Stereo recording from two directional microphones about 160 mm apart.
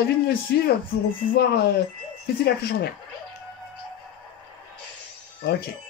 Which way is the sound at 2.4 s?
80° left.